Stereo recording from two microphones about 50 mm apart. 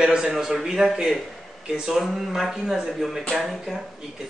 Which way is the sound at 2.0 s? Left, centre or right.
Centre.